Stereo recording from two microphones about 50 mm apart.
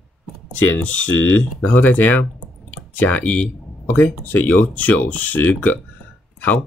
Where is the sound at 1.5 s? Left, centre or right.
Left.